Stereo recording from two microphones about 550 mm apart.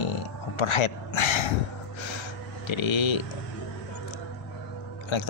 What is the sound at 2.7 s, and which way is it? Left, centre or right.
Speech, left.